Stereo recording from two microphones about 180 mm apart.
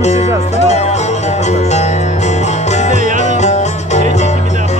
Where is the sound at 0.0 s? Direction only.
40° left (ahead or behind).